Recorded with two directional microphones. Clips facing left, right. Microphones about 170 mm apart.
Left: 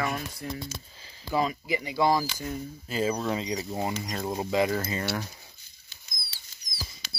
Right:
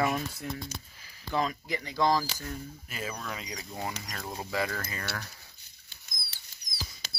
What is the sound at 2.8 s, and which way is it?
Speech, 30° left (ahead or behind).